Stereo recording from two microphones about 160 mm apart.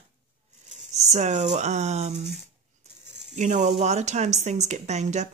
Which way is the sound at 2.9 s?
45° right (ahead or behind).